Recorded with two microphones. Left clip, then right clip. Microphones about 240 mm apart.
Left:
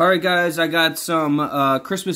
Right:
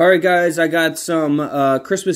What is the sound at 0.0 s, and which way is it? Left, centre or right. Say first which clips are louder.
Speech: right 4 dB; centre.